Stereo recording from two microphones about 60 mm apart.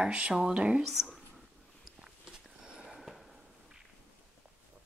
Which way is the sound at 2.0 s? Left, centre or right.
Centre.